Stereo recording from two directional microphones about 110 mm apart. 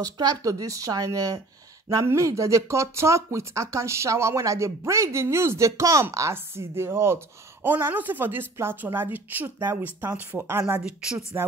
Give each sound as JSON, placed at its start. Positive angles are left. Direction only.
{"t": 0.0, "sound": "speech", "side_deg": -35}
{"t": 10.8, "sound": "speech", "side_deg": -5}